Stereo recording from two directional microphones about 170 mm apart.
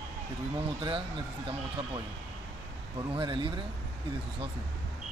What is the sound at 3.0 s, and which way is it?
Speech, 30° right (ahead or behind).